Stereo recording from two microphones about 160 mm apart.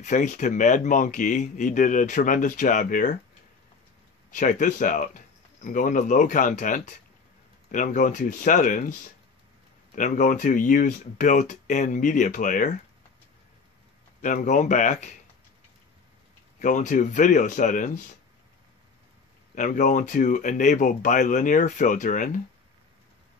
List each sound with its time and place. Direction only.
0.0 s speech: 50° left (ahead or behind)
4.3 s speech: 50° left (ahead or behind)
9.9 s speech: 50° left (ahead or behind)
14.2 s speech: 55° left (ahead or behind)
16.6 s speech: 50° left (ahead or behind)
19.5 s speech: 55° left (ahead or behind)